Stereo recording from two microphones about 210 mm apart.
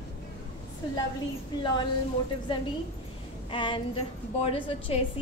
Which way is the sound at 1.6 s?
20° left (ahead or behind).